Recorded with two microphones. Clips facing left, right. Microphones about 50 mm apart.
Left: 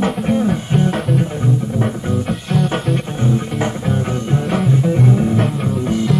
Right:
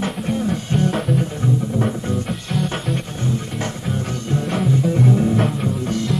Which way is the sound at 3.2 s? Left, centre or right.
Centre.